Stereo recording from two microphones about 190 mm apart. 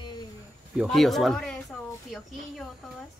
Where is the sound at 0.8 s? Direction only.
Centre (ahead or behind).